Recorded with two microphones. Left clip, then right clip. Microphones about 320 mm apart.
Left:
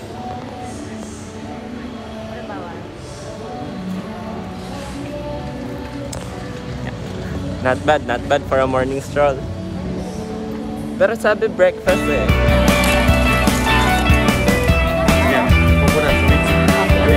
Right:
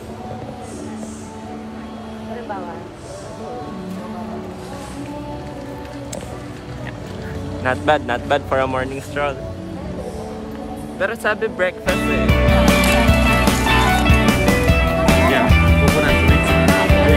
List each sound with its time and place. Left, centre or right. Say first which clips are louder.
7.6 s speech: left 1 dB; centre
11.0 s music: left 4 dB; centre